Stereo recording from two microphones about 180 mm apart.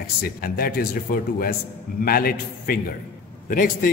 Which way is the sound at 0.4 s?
55° left (ahead or behind).